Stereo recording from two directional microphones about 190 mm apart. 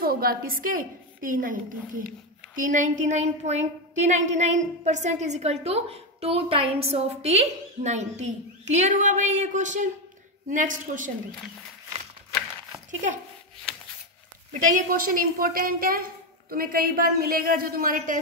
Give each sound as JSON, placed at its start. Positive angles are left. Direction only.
{"t": 0.0, "sound": "a woman's voice", "side_deg": -50}
{"t": 14.7, "sound": "a woman's voice", "side_deg": -50}